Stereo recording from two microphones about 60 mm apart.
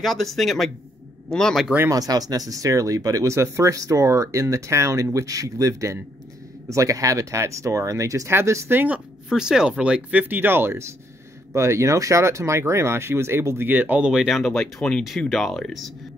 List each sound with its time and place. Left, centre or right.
0.0 s speech: centre
1.9 s speech: right
3.3 s speech: right
5.1 s speech: right
8.3 s speech: right
8.7 s speech: right
9.3 s speech: centre
10.2 s speech: right
13.7 s speech: right
14.2 s speech: centre